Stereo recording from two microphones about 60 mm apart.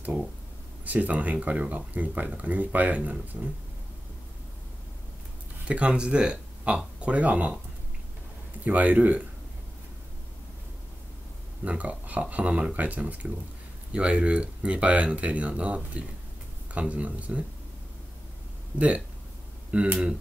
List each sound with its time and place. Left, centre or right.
0.8 s speech: right
5.7 s speech: centre
8.6 s speech: right
11.6 s speech: right
18.8 s speech: right